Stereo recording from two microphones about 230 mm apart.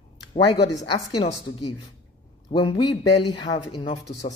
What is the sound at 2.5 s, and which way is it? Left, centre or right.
A man's voice, left.